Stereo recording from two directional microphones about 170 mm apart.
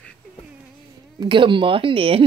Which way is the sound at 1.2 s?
30° right (ahead or behind).